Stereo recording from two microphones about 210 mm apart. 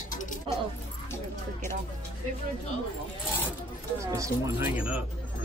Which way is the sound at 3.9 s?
15° right (ahead or behind).